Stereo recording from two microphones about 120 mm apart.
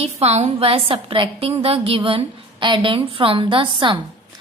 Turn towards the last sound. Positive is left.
turn(degrees=-45)  # may be behind; listen again after turning